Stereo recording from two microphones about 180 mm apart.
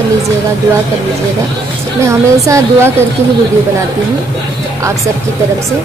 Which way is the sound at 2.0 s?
15° right (ahead or behind).